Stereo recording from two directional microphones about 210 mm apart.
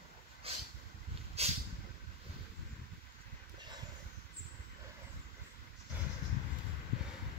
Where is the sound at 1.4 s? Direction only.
30° right (ahead or behind).